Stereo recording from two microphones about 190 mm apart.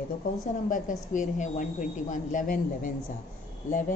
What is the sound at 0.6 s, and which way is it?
A woman's voice, 45° left (ahead or behind).